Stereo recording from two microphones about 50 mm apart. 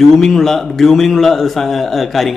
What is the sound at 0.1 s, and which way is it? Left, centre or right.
A woman's voice, centre.